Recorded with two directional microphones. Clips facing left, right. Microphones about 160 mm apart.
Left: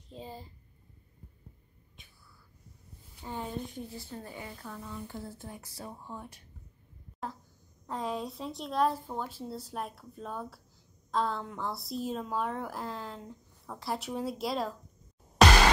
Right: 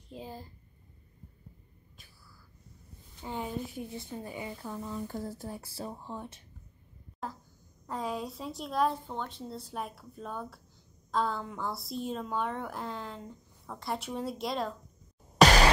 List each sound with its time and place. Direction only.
0.1 s a woman's voice: centre (ahead or behind)
2.0 s a sound: centre (ahead or behind)
3.3 s a woman's voice: 10° right (ahead or behind)
3.9 s a woman's voice: 20° right (ahead or behind)
4.6 s speech: 30° right (ahead or behind)
5.0 s speech: 40° right (ahead or behind); by 6.4 s 25° right (ahead or behind)
7.2 s a woman's voice: centre (ahead or behind)